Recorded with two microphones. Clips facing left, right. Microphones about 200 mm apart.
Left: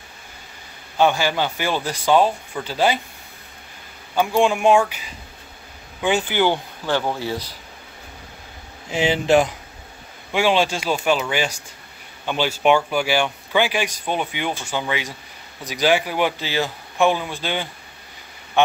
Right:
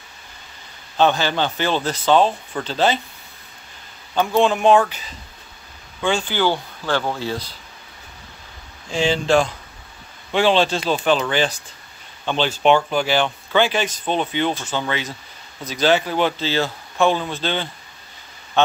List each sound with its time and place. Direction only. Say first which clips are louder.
0.9 s speech: even; 10° left (ahead or behind)
4.1 s speech: right 1 dB; 10° left (ahead or behind)
8.9 s speech: left 1 dB; 20° left (ahead or behind)